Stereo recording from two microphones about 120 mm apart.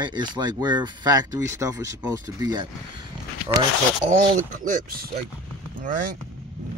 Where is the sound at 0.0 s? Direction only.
40° right (ahead or behind).